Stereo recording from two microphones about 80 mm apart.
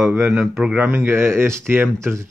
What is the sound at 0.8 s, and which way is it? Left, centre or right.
Speech, right.